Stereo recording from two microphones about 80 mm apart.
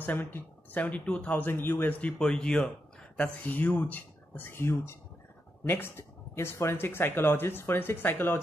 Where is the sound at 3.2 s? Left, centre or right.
Left.